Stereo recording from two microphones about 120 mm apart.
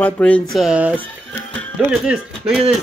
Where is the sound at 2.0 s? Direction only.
5° right (ahead or behind).